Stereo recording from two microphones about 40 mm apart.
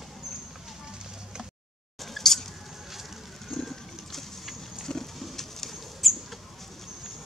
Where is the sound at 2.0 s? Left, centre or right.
Centre.